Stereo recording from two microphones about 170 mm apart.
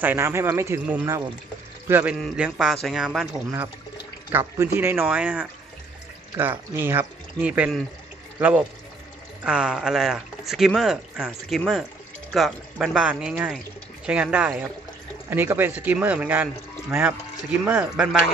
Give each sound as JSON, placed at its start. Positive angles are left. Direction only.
{"t": 0.0, "sound": "speech", "side_deg": -15}
{"t": 2.1, "sound": "speech", "side_deg": 0}
{"t": 4.3, "sound": "speech", "side_deg": -15}
{"t": 17.6, "sound": "speech", "side_deg": -5}